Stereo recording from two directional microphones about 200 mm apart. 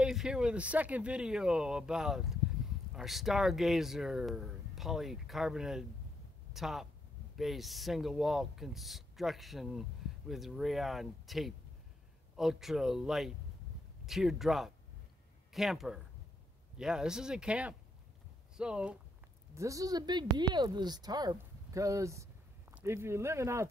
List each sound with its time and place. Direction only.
0.0 s speech: centre (ahead or behind)
19.5 s speech: 15° right (ahead or behind)